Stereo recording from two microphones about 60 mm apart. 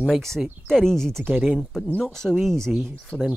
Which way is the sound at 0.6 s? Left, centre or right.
Centre.